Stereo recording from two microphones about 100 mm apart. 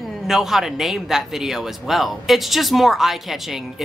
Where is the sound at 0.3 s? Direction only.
5° right (ahead or behind).